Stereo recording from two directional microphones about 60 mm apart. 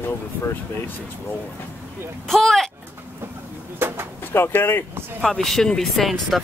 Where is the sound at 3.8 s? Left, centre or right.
Right.